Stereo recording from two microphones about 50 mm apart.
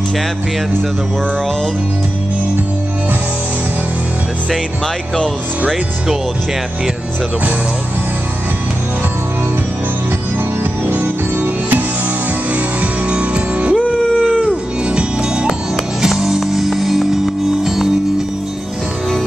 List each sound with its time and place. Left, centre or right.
10.9 s music: right
13.1 s music: right
14.9 s music: centre